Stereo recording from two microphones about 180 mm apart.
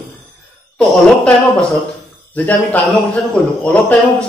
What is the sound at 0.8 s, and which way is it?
Speech, 5° left (ahead or behind).